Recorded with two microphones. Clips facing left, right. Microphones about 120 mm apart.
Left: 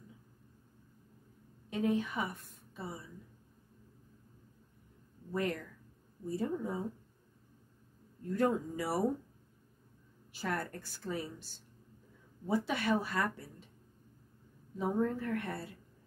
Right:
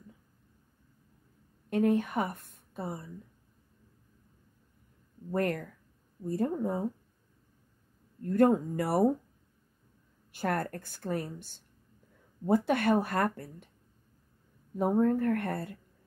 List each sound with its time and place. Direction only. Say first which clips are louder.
1.7 s a woman's voice: right 6 dB; 55° right (ahead or behind)
5.3 s speech: right 5 dB; 55° right (ahead or behind)
8.2 s a woman's voice: right 7 dB; 55° right (ahead or behind)
10.3 s a woman's voice: right 6 dB; 55° right (ahead or behind)
14.8 s a woman's voice: right 7 dB; 55° right (ahead or behind)